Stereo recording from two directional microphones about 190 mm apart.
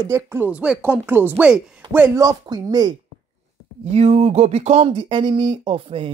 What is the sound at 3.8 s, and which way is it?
Speech, 35° right (ahead or behind).